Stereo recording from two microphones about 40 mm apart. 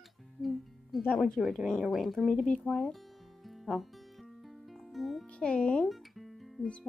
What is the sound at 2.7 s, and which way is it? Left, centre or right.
Music, centre.